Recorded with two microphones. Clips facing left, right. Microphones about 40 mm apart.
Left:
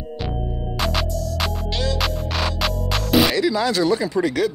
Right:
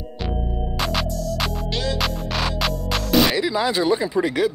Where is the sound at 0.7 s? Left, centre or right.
Centre.